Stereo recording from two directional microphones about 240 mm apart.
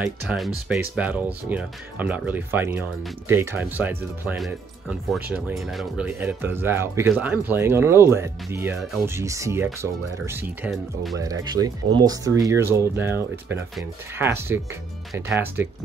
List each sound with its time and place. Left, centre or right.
0.0 s speech: centre
11.1 s speech: centre